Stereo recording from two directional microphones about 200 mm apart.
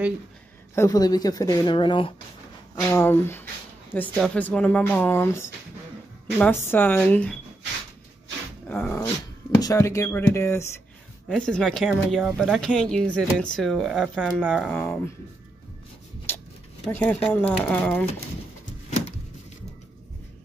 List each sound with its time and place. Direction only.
0.7 s speech: 15° left (ahead or behind)
2.7 s speech: 15° left (ahead or behind)
8.6 s dog: 10° left (ahead or behind)
9.6 s speech: 15° left (ahead or behind); by 14.7 s centre (ahead or behind)
14.7 s speech: 10° left (ahead or behind)
16.8 s speech: 10° left (ahead or behind)